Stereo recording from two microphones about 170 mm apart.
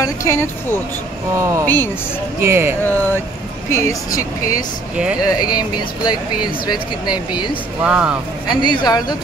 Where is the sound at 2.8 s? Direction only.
10° left (ahead or behind).